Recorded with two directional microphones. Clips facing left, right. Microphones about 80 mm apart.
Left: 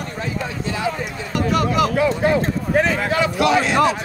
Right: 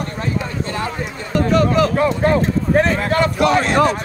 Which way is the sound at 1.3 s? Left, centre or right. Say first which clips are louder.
Right 4 dB; right.